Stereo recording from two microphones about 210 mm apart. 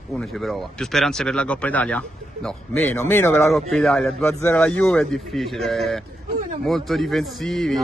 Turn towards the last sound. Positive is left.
turn(degrees=0)  # may be behind; listen again after turning